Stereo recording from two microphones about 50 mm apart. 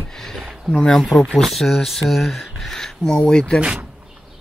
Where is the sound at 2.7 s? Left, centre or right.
Centre.